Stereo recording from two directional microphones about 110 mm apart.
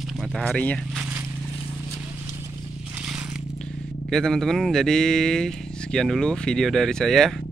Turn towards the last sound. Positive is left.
turn(degrees=5)  # may be behind; listen again after turning